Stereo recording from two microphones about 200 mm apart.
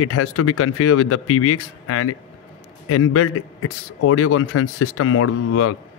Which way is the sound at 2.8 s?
90° left.